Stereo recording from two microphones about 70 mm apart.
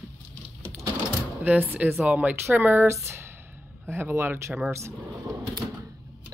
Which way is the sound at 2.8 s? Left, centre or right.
Right.